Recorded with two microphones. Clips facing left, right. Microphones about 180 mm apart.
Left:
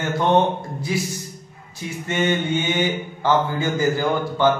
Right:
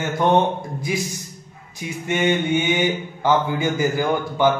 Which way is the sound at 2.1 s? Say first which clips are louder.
Right 2 dB; 15° right (ahead or behind).